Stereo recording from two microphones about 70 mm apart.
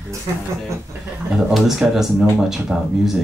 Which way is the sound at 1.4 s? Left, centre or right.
Centre.